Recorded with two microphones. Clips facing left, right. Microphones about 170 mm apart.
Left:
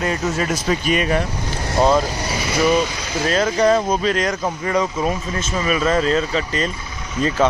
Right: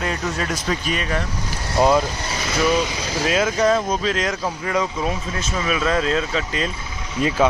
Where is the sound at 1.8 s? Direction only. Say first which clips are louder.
Left 1 dB; centre (ahead or behind).